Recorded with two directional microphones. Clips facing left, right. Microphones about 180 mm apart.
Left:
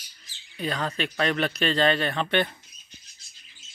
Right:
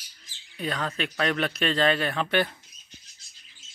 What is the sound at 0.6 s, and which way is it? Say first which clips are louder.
Speech: left 1 dB; centre (ahead or behind).